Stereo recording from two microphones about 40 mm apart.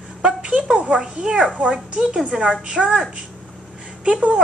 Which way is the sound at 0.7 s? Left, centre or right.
Right.